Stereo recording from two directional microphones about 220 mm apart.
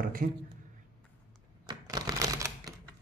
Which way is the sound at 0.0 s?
40° right (ahead or behind).